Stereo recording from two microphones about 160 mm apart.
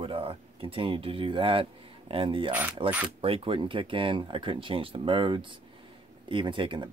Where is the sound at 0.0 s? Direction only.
35° right (ahead or behind).